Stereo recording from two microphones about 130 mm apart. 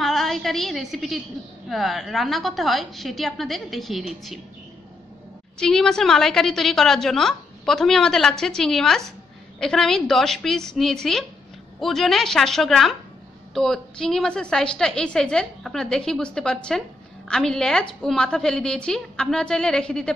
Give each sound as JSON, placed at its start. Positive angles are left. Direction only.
{"t": 0.0, "sound": "a woman's voice", "side_deg": 0}
{"t": 5.6, "sound": "a woman's voice", "side_deg": 5}